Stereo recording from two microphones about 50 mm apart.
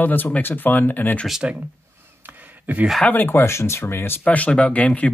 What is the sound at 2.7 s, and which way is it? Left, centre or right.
Speech, right.